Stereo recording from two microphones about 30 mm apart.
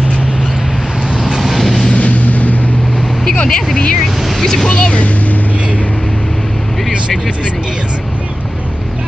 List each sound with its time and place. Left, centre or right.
1.4 s vehicle: centre
2.0 s vehicle: left
4.4 s speech: centre
4.6 s speech: left